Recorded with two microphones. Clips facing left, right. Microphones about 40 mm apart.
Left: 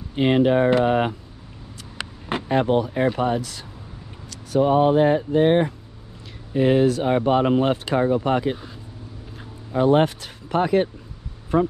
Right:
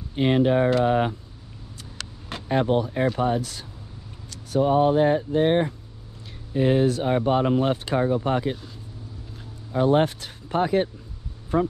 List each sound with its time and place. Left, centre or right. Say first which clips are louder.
0.1 s speech: left 2 dB; left
0.8 s speech: left 1 dB; left
2.0 s vehicle: left 9 dB; left
2.4 s speech: left 2 dB; left
2.7 s speech: left 2 dB; left
3.2 s speech: left 1 dB; left
9.8 s speech: left 2 dB; left